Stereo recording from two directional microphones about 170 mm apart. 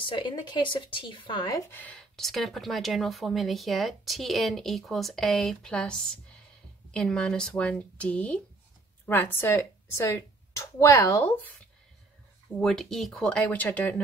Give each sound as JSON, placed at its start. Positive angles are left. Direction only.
{"t": 0.1, "sound": "speech", "side_deg": 30}
{"t": 12.5, "sound": "speech", "side_deg": 0}